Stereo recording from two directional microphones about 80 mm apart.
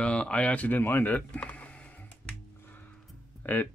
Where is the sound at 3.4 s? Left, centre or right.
Left.